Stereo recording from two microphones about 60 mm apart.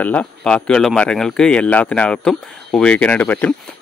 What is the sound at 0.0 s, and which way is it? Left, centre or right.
Speech, left.